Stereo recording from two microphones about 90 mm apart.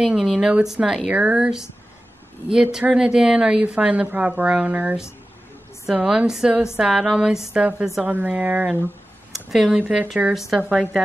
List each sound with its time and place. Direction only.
0.0 s speech: 5° right (ahead or behind)
9.3 s speech: centre (ahead or behind)